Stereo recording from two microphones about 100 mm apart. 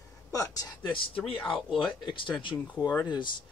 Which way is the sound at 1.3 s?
10° left (ahead or behind).